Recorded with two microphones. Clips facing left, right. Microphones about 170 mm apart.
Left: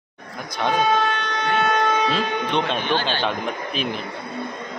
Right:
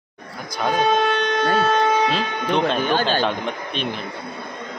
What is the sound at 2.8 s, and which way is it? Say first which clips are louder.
Speech: right 3 dB; 45° right (ahead or behind).